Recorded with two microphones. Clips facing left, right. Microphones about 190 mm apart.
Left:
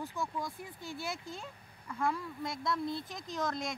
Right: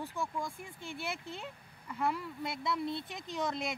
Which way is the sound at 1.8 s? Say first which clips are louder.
Even; 5° right (ahead or behind).